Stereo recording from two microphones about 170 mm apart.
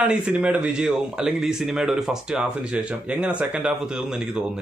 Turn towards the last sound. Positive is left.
turn(degrees=-5)  # may be behind; listen again after turning